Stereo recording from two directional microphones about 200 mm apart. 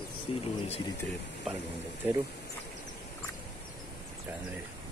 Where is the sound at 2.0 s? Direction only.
10° right (ahead or behind).